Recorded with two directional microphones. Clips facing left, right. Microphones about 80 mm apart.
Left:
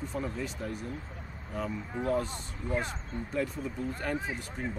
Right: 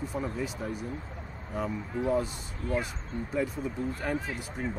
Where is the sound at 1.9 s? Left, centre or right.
Centre.